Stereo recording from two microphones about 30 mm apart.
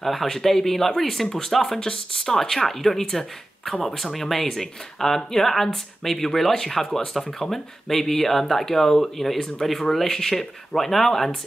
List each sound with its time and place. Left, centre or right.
0.0 s speech: centre